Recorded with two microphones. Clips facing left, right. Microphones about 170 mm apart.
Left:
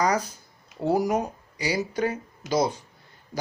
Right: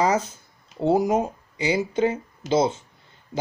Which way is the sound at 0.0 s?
25° right (ahead or behind).